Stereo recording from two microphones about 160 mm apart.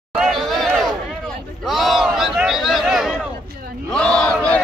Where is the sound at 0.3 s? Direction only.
Centre (ahead or behind).